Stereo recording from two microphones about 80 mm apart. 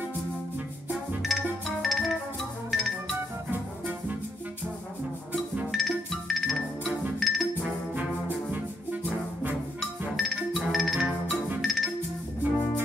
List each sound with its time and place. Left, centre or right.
1.2 s music: centre
5.3 s music: centre
7.9 s music: right
9.8 s music: centre